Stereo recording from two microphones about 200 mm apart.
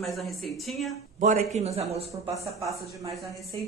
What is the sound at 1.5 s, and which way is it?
Speech, 30° right (ahead or behind).